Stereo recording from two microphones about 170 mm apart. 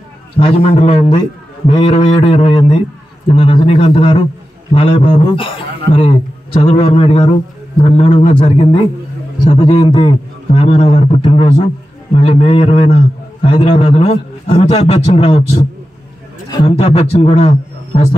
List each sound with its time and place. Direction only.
0.4 s a man's voice: 35° left (ahead or behind)
16.6 s a man's voice: 35° left (ahead or behind)